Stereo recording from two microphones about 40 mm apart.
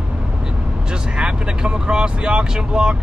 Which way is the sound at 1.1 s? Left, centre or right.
Right.